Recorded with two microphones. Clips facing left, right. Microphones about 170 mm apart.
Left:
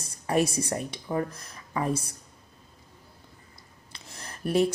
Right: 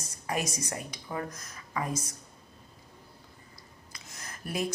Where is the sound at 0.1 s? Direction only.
30° left (ahead or behind).